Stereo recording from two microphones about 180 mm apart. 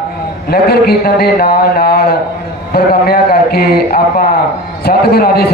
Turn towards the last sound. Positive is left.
turn(degrees=60)  # may be behind; listen again after turning